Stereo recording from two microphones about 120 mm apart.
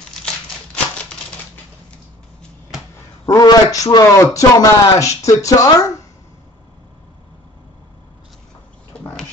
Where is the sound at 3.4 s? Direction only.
35° left (ahead or behind).